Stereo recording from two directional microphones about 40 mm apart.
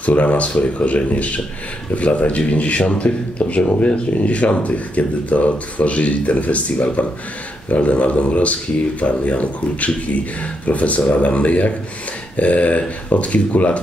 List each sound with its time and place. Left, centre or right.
0.0 s speech: left